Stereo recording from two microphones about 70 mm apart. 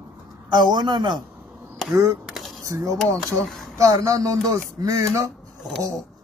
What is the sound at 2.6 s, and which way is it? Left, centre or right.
Speech, right.